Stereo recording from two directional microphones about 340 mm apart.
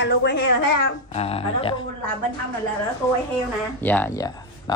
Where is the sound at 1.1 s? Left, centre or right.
Centre.